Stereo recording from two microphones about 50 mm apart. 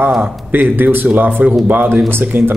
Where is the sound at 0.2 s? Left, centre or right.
Right.